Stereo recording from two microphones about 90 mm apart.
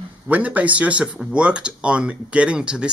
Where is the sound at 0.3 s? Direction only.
15° right (ahead or behind).